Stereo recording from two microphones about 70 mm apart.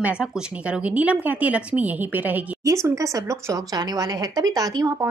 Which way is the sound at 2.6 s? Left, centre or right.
Right.